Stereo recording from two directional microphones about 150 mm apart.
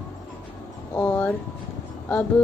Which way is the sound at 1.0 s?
10° left (ahead or behind).